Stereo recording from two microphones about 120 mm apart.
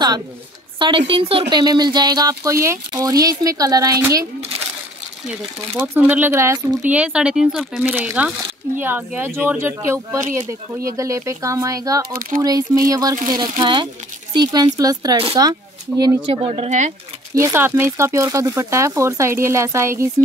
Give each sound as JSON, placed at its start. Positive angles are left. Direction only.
{"t": 0.7, "sound": "a woman's voice", "side_deg": -45}
{"t": 5.3, "sound": "speech", "side_deg": -15}
{"t": 6.9, "sound": "speech", "side_deg": -10}
{"t": 16.3, "sound": "a woman's voice", "side_deg": -50}
{"t": 16.6, "sound": "speech", "side_deg": -80}
{"t": 17.4, "sound": "speech", "side_deg": -20}